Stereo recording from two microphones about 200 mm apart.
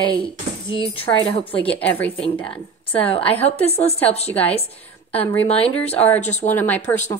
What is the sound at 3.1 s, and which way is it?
Speech, 30° left (ahead or behind).